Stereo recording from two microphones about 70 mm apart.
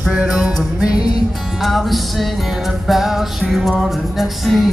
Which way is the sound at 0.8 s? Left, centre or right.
Left.